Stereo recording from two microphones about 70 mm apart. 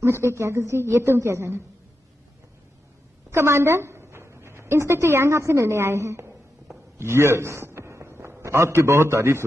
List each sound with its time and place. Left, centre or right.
0.0 s speech: right
3.3 s a woman's voice: right